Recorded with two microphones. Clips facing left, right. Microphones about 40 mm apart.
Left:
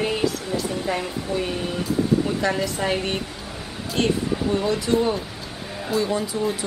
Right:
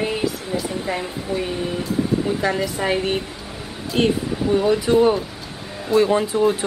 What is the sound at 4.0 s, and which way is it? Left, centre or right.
A woman's voice, right.